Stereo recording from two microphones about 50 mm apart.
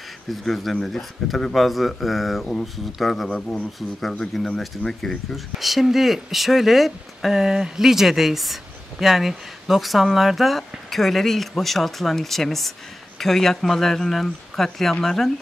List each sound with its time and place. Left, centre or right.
0.3 s speech: centre
4.6 s speech: centre